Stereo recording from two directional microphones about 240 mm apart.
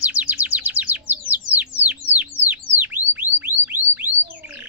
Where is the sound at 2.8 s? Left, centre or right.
Centre.